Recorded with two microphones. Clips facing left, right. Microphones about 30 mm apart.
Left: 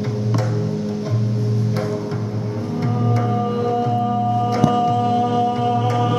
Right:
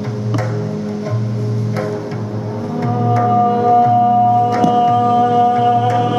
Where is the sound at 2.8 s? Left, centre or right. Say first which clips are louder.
Right 6 dB; centre.